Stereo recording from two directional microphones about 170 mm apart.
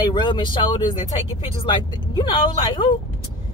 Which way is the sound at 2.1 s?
25° left (ahead or behind).